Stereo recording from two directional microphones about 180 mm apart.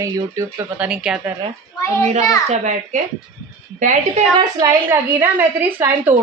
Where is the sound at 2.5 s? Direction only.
40° right (ahead or behind).